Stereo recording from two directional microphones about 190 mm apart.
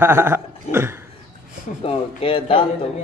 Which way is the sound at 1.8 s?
30° left (ahead or behind).